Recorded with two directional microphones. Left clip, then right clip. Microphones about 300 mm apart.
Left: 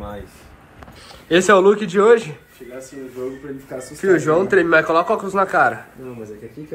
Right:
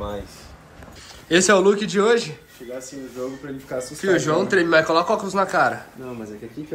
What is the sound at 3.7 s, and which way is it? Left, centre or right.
Speech, centre.